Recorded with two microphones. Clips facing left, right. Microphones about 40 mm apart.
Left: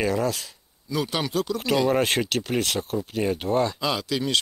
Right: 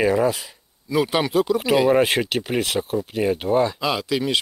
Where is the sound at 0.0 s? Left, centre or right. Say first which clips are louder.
Right 5 dB; centre.